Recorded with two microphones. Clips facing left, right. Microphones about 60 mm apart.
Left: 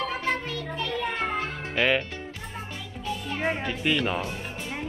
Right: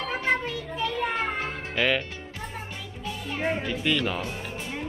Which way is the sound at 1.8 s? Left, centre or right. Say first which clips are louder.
Left 1 dB; centre.